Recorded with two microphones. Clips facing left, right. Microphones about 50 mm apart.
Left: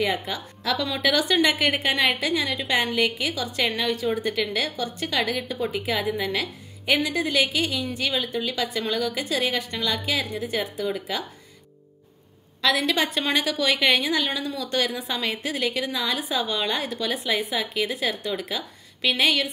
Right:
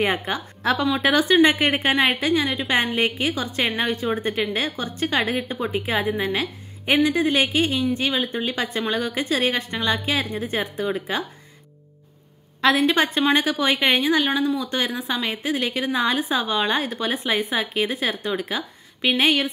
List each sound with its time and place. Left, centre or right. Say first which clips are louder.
0.3 s a woman's voice: right 5 dB; right
12.6 s a woman's voice: right 4 dB; right
15.6 s a woman's voice: right 3 dB; right